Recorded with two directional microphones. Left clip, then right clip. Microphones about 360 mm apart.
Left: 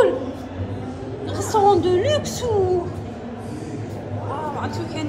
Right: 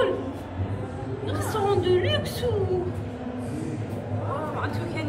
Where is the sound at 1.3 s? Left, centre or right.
Centre.